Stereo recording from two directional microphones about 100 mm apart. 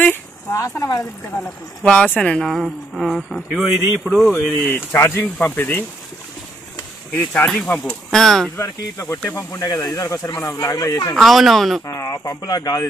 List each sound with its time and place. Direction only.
0.5 s speech: 30° left (ahead or behind)
1.8 s speech: 10° left (ahead or behind)
4.6 s speech: 20° left (ahead or behind)
7.2 s speech: 10° left (ahead or behind)
8.5 s speech: 35° left (ahead or behind)
11.1 s speech: centre (ahead or behind)
11.8 s speech: 30° left (ahead or behind)